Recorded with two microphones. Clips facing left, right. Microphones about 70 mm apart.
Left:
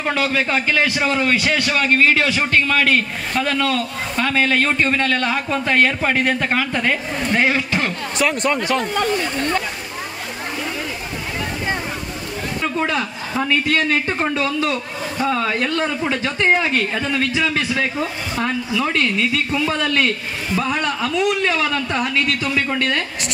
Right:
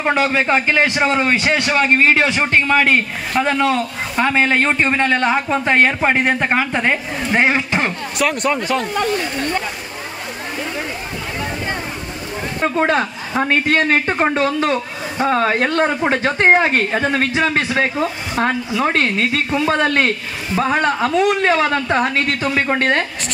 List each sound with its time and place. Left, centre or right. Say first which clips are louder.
0.0 s a man's voice: right 3 dB; right
8.2 s speech: right 1 dB; centre
12.5 s a man's voice: right 5 dB; right